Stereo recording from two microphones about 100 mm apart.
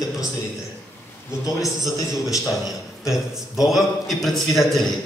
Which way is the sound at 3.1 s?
5° right (ahead or behind).